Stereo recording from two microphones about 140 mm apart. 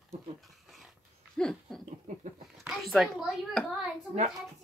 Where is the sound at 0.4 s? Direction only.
Centre (ahead or behind).